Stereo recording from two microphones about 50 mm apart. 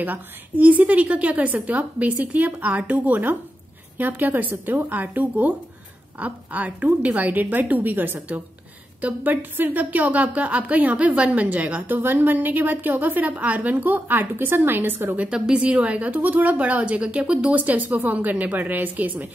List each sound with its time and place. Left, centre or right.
0.0 s a woman's voice: right
15.3 s a woman's voice: centre; by 19.2 s right